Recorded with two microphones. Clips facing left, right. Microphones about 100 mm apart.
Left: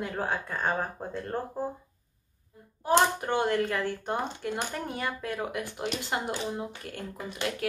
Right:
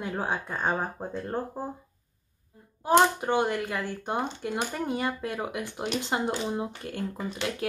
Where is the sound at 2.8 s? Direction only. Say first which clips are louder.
Right 3 dB; 15° right (ahead or behind).